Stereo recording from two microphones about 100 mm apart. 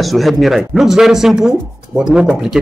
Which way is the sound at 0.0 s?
Centre (ahead or behind).